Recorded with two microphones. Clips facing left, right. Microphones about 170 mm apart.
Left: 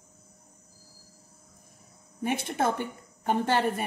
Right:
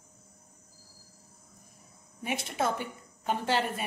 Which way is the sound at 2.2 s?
55° left (ahead or behind).